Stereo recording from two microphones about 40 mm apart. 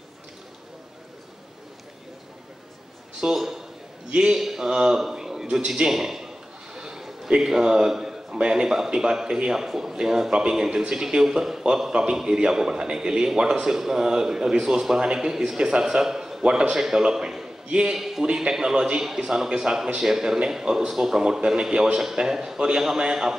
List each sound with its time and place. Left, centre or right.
3.3 s a man's voice: centre
4.1 s a man's voice: right
4.4 s a man's voice: centre
13.7 s a man's voice: centre
16.4 s a man's voice: right
17.6 s a man's voice: right
17.9 s a man's voice: centre
18.2 s a man's voice: right